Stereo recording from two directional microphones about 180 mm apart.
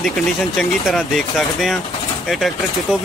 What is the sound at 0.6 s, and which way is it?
Speech, centre (ahead or behind).